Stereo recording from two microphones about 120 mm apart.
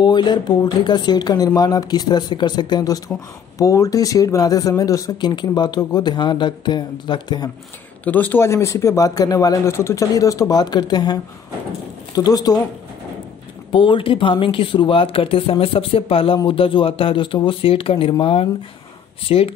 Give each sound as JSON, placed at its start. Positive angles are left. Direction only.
{"t": 0.0, "sound": "speech", "side_deg": 35}
{"t": 8.0, "sound": "speech", "side_deg": 15}
{"t": 12.2, "sound": "speech", "side_deg": 35}
{"t": 13.7, "sound": "speech", "side_deg": 45}